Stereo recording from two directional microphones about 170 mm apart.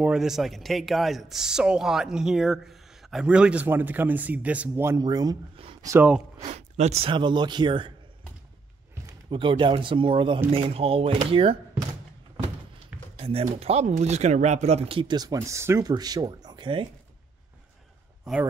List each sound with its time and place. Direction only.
0.0 s speech: 5° right (ahead or behind); by 5.4 s 20° right (ahead or behind)
5.9 s speech: 10° right (ahead or behind)
6.4 s speech: 40° right (ahead or behind)
9.3 s speech: 30° right (ahead or behind)
13.1 s speech: 35° right (ahead or behind)